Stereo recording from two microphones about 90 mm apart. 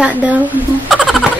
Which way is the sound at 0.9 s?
Centre (ahead or behind).